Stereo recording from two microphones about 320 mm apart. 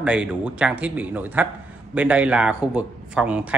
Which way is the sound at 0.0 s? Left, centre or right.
Centre.